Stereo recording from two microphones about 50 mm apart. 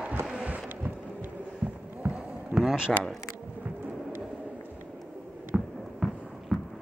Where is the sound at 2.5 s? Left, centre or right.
Centre.